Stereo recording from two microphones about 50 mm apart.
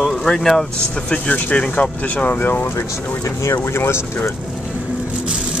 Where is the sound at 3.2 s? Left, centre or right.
Left.